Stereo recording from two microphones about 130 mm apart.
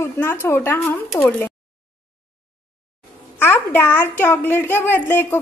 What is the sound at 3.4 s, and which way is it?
A child's voice, 15° left (ahead or behind).